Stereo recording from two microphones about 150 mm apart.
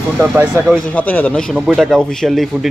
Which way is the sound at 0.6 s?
10° left (ahead or behind).